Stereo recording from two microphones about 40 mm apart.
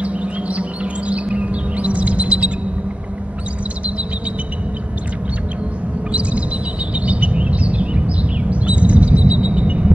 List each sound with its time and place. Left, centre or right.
0.0 s chirp: right
7.0 s bird: right